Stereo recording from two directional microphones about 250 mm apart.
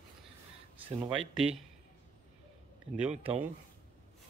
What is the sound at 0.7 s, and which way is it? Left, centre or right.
Speech, centre.